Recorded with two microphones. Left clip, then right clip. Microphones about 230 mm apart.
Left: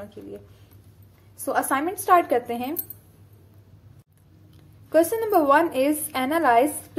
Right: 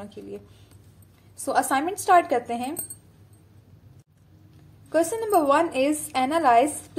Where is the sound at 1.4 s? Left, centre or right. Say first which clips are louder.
Right 1 dB; centre.